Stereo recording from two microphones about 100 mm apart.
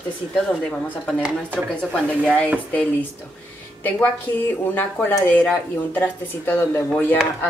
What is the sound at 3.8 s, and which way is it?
Speech, 20° left (ahead or behind).